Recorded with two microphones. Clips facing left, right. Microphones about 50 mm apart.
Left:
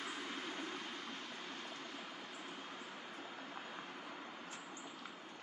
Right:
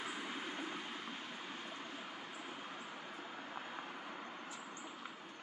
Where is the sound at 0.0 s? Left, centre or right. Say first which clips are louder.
Right 1 dB; centre.